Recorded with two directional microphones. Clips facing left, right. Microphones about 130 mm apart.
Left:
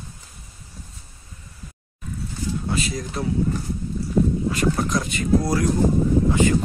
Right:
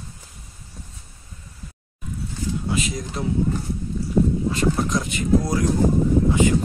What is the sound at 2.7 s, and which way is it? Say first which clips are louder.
Speech: even; 20° right (ahead or behind).